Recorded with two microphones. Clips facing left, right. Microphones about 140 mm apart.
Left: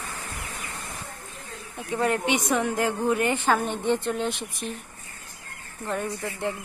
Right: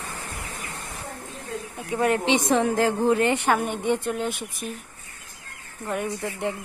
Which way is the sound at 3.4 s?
10° right (ahead or behind).